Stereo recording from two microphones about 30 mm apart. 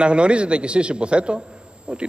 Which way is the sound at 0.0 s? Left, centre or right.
Right.